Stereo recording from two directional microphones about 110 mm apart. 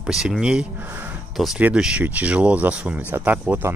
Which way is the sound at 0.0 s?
5° right (ahead or behind).